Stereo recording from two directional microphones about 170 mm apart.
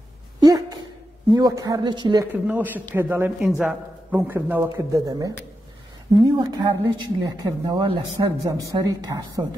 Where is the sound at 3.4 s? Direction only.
5° right (ahead or behind).